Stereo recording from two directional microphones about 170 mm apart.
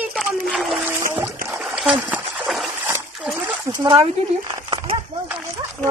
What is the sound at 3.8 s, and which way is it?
Speech, 30° right (ahead or behind).